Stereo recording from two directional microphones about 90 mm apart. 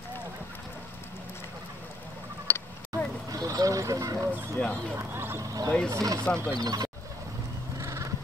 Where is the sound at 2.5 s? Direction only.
20° left (ahead or behind).